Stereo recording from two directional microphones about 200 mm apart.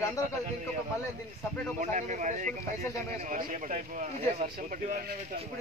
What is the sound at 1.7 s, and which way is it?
Speech, 40° right (ahead or behind).